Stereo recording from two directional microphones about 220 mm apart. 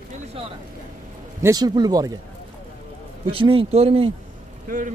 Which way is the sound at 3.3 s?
25° right (ahead or behind).